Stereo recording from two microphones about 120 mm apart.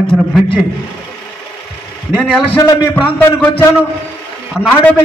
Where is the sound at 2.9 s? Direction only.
15° left (ahead or behind).